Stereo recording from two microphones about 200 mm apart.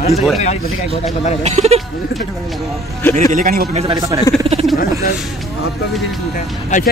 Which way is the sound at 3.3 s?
45° right (ahead or behind).